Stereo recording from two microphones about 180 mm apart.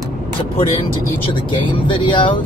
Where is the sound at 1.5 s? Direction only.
25° left (ahead or behind).